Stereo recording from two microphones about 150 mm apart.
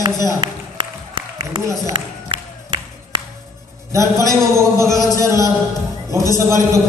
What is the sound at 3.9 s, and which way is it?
A man's voice, 20° right (ahead or behind).